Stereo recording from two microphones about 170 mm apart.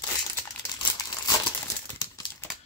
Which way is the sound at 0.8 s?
25° left (ahead or behind).